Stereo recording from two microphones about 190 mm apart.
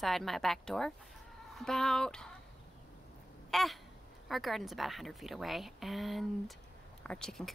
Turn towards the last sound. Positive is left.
turn(degrees=5)  # may be behind; listen again after turning